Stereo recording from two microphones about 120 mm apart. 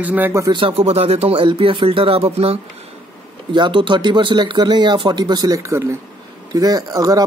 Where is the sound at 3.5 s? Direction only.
40° right (ahead or behind).